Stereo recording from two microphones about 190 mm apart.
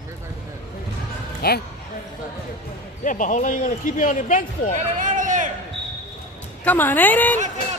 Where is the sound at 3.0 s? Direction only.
40° left (ahead or behind).